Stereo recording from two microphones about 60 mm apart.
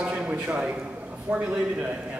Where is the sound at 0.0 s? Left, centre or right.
Right.